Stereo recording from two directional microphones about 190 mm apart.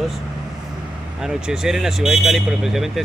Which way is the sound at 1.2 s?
5° right (ahead or behind).